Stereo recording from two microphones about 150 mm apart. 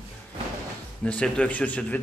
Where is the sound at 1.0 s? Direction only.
5° left (ahead or behind).